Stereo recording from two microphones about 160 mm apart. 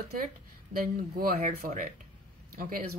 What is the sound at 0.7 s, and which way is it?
Speech, 65° right (ahead or behind).